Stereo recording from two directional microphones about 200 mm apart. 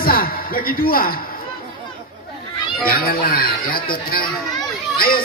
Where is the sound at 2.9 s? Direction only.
50° left (ahead or behind).